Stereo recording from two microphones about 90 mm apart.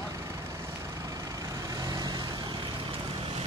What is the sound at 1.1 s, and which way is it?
Vehicle, 40° right (ahead or behind).